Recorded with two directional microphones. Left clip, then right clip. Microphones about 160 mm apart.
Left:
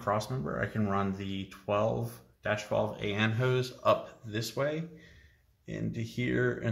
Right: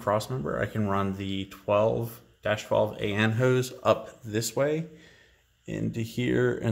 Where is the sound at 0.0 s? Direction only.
35° right (ahead or behind).